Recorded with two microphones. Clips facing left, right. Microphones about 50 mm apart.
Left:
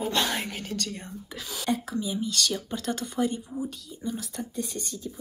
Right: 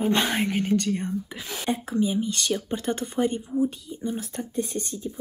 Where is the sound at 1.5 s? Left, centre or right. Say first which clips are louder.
Even; right.